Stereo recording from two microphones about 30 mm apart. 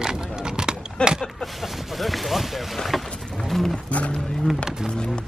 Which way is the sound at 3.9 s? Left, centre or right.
Left.